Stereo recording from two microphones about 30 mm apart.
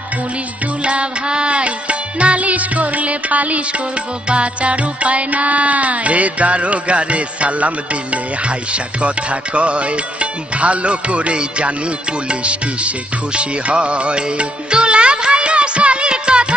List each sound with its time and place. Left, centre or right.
0.8 s music: right
4.3 s music: right